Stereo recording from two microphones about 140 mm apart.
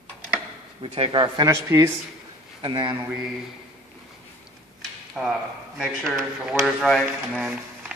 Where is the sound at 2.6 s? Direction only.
35° right (ahead or behind).